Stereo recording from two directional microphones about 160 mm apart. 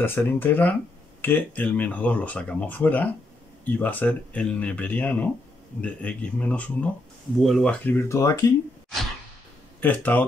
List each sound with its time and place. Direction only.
0.0 s speech: 10° left (ahead or behind)
9.8 s speech: 10° left (ahead or behind)